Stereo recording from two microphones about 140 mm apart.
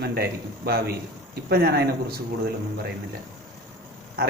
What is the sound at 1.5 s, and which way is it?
Speech, 90° right.